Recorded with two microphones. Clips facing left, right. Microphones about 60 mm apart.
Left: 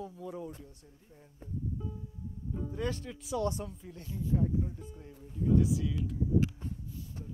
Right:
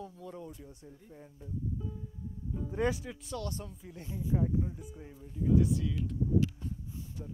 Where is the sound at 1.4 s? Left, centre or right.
Left.